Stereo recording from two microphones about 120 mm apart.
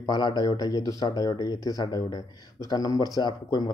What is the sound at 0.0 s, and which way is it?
Speech, 35° left (ahead or behind).